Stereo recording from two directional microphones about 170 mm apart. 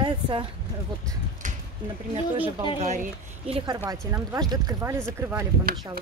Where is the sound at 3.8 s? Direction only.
15° right (ahead or behind).